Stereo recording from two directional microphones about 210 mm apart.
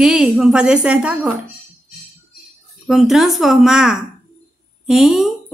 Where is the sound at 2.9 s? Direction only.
Centre (ahead or behind).